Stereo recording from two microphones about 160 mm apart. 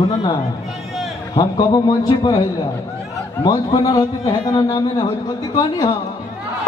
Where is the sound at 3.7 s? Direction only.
30° left (ahead or behind).